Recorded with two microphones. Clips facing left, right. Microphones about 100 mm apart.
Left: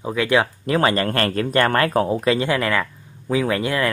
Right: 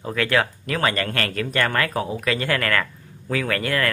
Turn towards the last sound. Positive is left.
turn(degrees=15)  # may be behind; listen again after turning